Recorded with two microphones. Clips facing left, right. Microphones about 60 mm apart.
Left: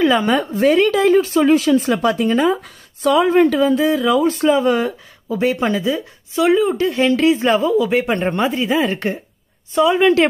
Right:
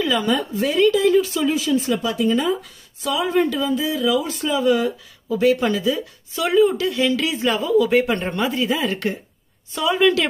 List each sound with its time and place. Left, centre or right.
0.0 s a woman's voice: left
5.3 s speech: left
6.9 s a woman's voice: left